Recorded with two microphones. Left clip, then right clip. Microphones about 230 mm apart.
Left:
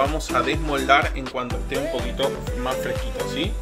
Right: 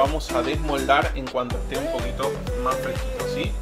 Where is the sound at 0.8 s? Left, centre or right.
Centre.